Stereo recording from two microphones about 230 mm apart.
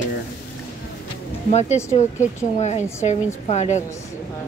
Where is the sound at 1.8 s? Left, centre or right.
Centre.